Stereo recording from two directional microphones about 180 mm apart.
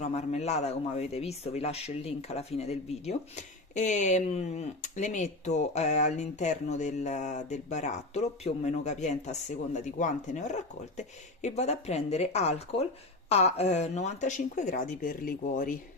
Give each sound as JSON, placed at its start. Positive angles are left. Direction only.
{"t": 0.0, "sound": "speech", "side_deg": 40}